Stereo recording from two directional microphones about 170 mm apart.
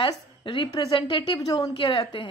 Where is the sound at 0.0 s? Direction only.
30° left (ahead or behind).